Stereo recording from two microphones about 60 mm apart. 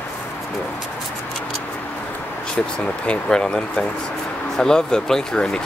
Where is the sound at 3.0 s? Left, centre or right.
Centre.